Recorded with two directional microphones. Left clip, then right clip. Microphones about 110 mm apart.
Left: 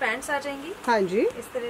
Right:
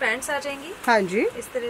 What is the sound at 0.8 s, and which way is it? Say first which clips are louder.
Speech: right 2 dB; 45° right (ahead or behind).